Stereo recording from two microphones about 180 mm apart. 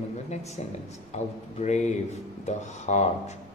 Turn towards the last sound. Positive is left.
turn(degrees=40)  # may be behind; listen again after turning